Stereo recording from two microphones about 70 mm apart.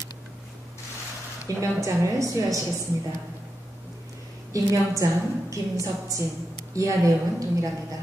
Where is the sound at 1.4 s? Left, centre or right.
Right.